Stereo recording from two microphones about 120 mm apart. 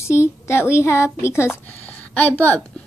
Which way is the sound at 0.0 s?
20° left (ahead or behind).